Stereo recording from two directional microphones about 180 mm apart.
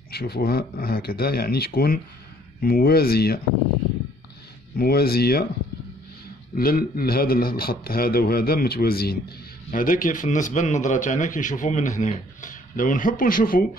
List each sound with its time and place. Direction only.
0.1 s a man's voice: 60° left (ahead or behind)
4.7 s a man's voice: 60° left (ahead or behind)
6.5 s a man's voice: 55° left (ahead or behind)